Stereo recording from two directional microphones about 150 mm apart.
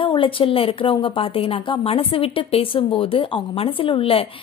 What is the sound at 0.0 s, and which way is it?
A woman's voice, 35° left (ahead or behind).